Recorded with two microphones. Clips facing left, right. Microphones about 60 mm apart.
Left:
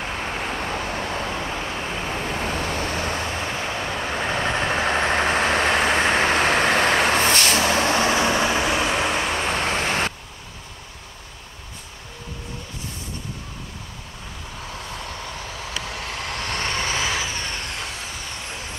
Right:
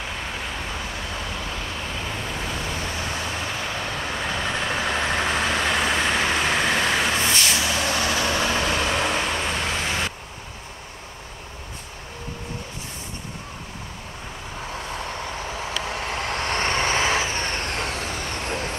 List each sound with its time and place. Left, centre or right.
0.0 s vehicle: left
2.4 s vehicle: left
3.6 s vehicle: centre
9.5 s vehicle: left
14.7 s vehicle: centre; by 18.8 s right